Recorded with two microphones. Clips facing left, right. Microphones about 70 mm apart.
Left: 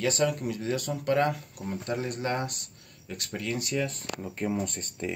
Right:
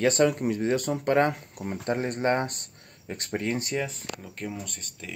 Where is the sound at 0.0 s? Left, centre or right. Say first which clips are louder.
Right 5 dB; right.